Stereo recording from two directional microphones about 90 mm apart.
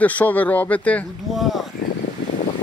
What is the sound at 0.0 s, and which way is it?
Speech, 15° left (ahead or behind).